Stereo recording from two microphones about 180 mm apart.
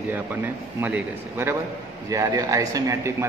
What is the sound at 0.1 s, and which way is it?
A man's voice, 10° right (ahead or behind).